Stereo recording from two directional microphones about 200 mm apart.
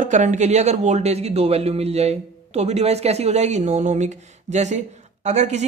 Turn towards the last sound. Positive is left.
turn(degrees=-35)  # may be behind; listen again after turning